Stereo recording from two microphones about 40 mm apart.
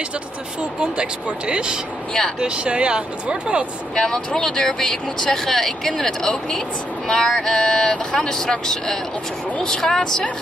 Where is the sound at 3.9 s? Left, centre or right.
Centre.